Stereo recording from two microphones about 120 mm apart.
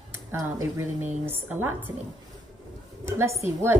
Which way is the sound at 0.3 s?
20° right (ahead or behind).